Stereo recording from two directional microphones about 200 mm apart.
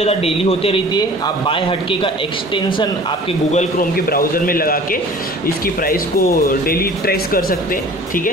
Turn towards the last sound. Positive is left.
turn(degrees=45)  # may be behind; listen again after turning